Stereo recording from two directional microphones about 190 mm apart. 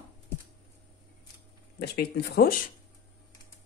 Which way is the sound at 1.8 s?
55° left (ahead or behind).